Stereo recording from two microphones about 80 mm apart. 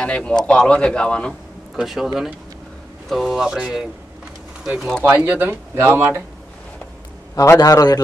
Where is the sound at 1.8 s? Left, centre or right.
Centre.